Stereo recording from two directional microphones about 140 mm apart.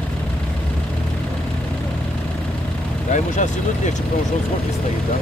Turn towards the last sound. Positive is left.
turn(degrees=60)  # may be behind; listen again after turning